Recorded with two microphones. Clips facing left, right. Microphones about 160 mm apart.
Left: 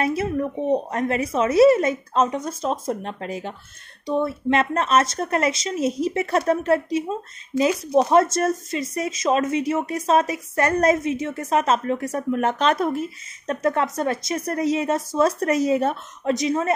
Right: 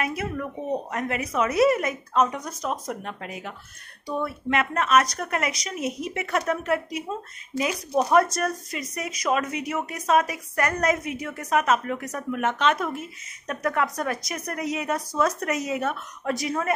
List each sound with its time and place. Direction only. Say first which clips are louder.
0.0 s speech: left 6 dB; 30° left (ahead or behind)